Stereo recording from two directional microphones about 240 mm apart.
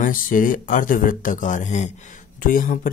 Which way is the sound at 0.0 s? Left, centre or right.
Left.